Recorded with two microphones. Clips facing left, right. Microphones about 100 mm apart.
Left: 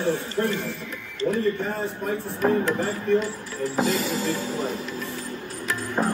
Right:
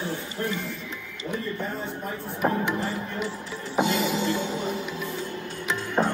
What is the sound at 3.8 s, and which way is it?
Music, centre (ahead or behind).